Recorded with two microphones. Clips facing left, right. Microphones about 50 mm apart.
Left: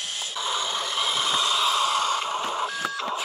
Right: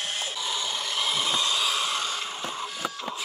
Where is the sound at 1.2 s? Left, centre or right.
Centre.